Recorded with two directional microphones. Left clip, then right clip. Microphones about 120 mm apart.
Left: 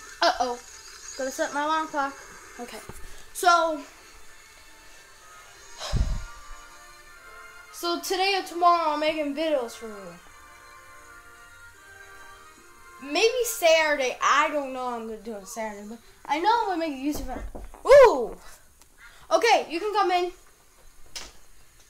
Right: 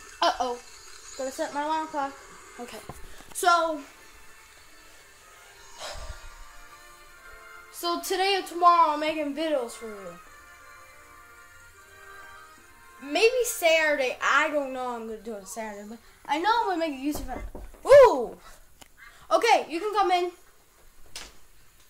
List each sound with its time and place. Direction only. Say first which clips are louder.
0.2 s toothbrush: left 2 dB; 15° left (ahead or behind)
1.4 s speech: left 3 dB; 20° left (ahead or behind)
3.3 s a woman's voice: left 2 dB; centre (ahead or behind)
5.8 s music: left 3 dB; 10° left (ahead or behind)
7.7 s a woman's voice: left 1 dB; centre (ahead or behind)
13.1 s a woman's voice: right 1 dB; 10° left (ahead or behind)
17.8 s a sound: left 1 dB; centre (ahead or behind)
19.2 s a woman's voice: left 1 dB; centre (ahead or behind)